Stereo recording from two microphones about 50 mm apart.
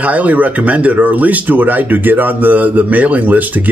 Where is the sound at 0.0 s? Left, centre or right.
Right.